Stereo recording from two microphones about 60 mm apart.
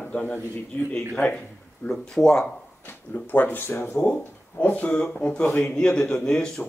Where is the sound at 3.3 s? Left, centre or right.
Left.